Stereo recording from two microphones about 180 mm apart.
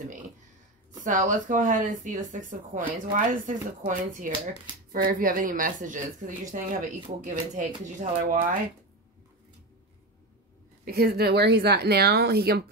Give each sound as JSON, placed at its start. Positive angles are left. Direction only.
{"t": 1.0, "sound": "speech", "side_deg": -45}
{"t": 10.9, "sound": "speech", "side_deg": -60}